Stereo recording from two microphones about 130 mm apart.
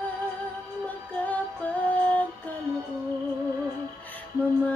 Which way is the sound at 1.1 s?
10° left (ahead or behind).